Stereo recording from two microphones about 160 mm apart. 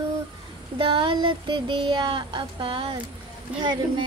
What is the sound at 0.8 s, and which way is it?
Speech, 30° right (ahead or behind).